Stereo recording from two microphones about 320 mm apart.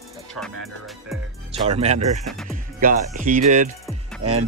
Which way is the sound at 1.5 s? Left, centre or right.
Centre.